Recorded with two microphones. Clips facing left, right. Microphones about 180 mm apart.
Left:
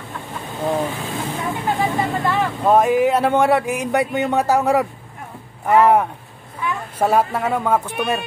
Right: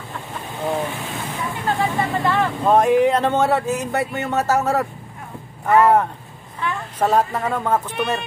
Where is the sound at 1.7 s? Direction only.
20° left (ahead or behind).